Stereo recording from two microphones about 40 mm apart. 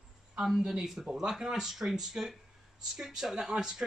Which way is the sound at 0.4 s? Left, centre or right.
Centre.